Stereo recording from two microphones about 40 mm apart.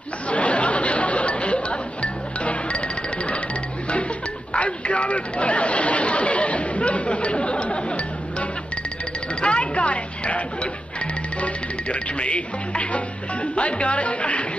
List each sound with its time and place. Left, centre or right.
0.3 s chatter: left
4.6 s chatter: left
9.4 s a sound: left
11.4 s speech: left